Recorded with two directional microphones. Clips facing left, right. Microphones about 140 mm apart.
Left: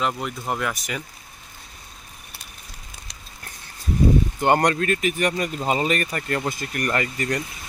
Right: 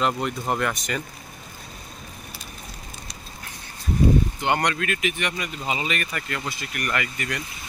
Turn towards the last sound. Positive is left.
turn(degrees=40)  # may be behind; listen again after turning